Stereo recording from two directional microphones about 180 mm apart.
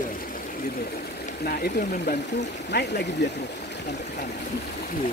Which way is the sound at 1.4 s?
55° left (ahead or behind).